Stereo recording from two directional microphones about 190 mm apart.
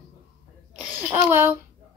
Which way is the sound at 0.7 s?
10° right (ahead or behind).